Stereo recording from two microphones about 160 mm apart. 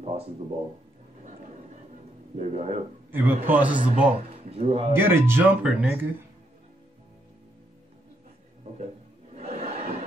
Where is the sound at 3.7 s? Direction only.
55° right (ahead or behind).